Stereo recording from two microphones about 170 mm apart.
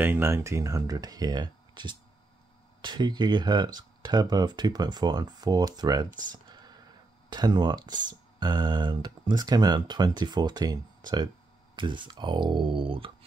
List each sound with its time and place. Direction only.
0.0 s speech: 15° right (ahead or behind)
7.2 s speech: 25° right (ahead or behind)